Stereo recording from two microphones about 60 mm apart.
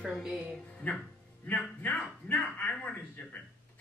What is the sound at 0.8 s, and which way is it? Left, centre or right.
Speech, left.